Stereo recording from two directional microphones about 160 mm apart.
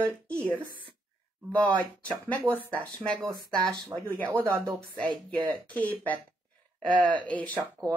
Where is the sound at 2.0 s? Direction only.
10° left (ahead or behind).